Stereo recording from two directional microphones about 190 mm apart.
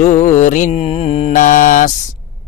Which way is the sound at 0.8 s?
30° left (ahead or behind).